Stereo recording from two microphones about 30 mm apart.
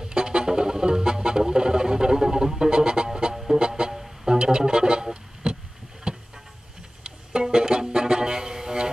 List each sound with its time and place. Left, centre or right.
0.0 s music: right
3.9 s music: centre
4.3 s music: right
5.1 s a sound: right
6.1 s boat: right
7.4 s music: right